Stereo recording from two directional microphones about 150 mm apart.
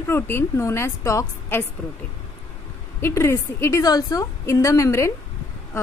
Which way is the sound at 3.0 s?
15° left (ahead or behind).